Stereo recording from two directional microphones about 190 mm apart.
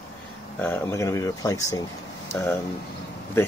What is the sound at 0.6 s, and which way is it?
Speech, 10° left (ahead or behind).